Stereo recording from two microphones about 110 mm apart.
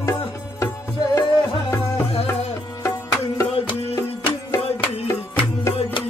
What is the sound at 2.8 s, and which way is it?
Music, 25° left (ahead or behind).